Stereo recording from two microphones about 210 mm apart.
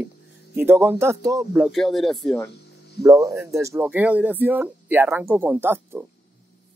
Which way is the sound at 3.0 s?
15° right (ahead or behind).